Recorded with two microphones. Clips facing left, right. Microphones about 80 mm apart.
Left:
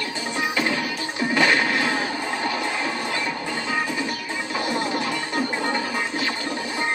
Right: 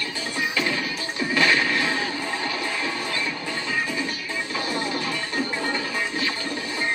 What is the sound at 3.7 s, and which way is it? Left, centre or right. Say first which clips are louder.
Music: left 1 dB; left.